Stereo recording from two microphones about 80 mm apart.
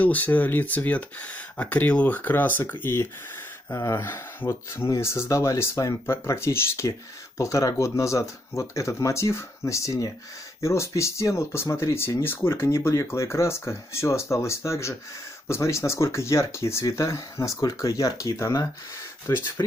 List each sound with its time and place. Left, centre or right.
0.0 s speech: centre
3.7 s speech: left
6.0 s speech: left